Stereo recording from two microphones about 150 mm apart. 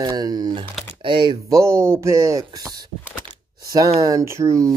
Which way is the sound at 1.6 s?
20° right (ahead or behind).